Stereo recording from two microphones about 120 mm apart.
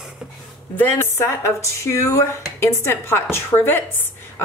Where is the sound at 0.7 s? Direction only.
20° left (ahead or behind).